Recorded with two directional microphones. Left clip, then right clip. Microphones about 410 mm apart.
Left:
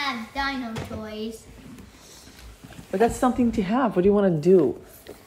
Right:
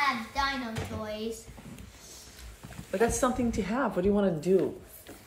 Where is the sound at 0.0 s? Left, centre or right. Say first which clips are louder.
Left 1 dB; centre.